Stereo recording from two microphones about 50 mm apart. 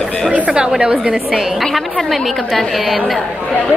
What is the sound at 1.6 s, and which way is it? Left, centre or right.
A woman's voice, centre.